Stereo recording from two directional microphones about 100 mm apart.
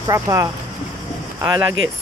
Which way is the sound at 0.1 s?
35° right (ahead or behind).